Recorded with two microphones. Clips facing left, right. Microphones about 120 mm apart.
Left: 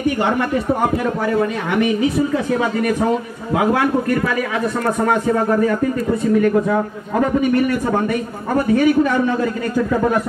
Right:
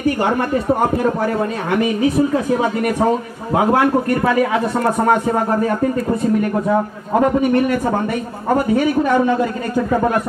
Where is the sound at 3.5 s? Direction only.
35° right (ahead or behind).